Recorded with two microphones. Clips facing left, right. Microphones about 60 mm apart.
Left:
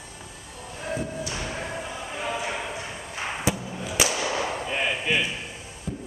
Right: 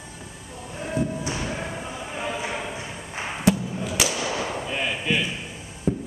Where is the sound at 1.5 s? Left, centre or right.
Centre.